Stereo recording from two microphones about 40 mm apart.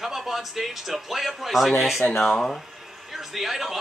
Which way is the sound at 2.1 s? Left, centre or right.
Centre.